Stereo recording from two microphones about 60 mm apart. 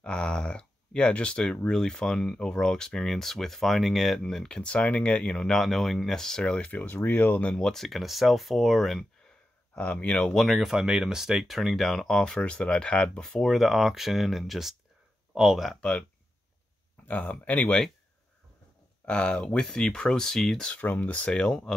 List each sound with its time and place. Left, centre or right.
0.0 s speech: centre
6.7 s speech: left
7.5 s speech: centre
9.8 s speech: left; by 15.7 s centre
15.7 s speech: centre
17.0 s speech: left
19.0 s speech: centre
20.8 s speech: left; by 21.7 s centre